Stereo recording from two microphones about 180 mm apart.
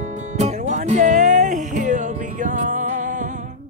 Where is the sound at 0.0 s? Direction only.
40° right (ahead or behind).